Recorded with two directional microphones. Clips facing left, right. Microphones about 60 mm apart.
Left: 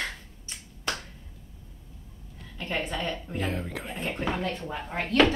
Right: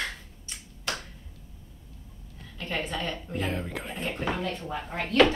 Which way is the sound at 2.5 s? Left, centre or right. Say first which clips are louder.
Left 1 dB; centre.